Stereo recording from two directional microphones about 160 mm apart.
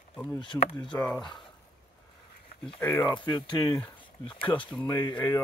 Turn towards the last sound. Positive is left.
turn(degrees=25)  # may be behind; listen again after turning